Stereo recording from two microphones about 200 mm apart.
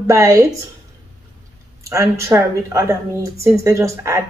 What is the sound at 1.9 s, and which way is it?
Speech, 15° right (ahead or behind).